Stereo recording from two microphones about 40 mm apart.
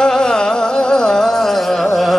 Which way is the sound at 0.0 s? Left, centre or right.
Centre.